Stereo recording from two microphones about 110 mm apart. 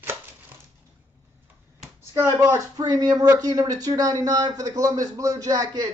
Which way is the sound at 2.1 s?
30° right (ahead or behind).